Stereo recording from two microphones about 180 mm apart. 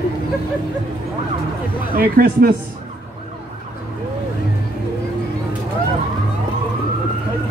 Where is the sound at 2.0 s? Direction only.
55° right (ahead or behind).